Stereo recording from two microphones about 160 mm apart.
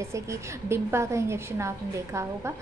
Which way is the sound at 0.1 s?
15° right (ahead or behind).